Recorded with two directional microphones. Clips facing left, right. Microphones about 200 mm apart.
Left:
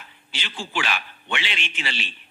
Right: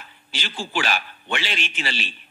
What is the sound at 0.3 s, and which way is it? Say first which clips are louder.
A man's voice: right 3 dB; 40° right (ahead or behind).